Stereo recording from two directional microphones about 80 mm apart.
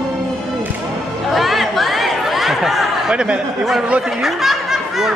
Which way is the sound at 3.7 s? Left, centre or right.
Centre.